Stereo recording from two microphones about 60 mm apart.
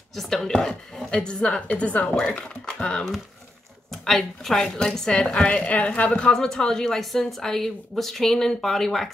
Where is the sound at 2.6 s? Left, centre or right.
Centre.